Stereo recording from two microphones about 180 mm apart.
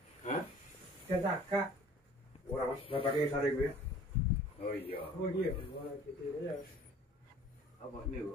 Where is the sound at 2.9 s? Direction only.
30° left (ahead or behind).